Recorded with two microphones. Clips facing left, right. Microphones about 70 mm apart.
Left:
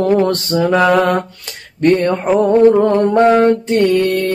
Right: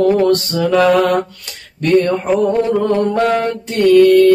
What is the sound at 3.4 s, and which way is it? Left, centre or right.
Mantra, left.